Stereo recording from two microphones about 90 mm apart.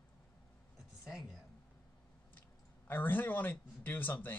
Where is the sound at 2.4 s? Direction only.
20° left (ahead or behind).